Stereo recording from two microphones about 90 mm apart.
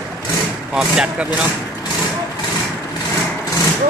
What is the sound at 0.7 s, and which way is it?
Speech, 10° right (ahead or behind).